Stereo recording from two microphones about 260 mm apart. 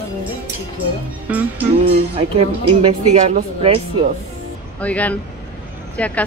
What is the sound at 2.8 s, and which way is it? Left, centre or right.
Speech, right.